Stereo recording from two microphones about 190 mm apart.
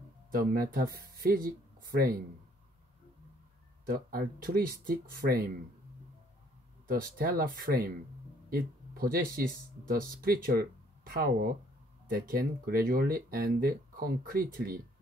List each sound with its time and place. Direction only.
0.3 s speech: 50° right (ahead or behind)
3.8 s speech: 50° right (ahead or behind)
6.9 s speech: 50° right (ahead or behind)